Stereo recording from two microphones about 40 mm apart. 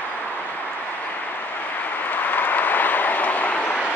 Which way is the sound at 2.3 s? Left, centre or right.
Left.